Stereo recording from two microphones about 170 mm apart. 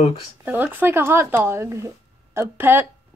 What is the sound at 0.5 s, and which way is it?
Speech, 10° right (ahead or behind).